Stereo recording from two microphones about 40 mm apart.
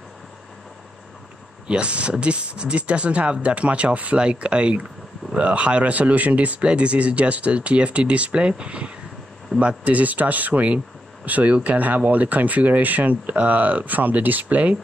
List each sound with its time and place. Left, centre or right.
1.7 s speech: right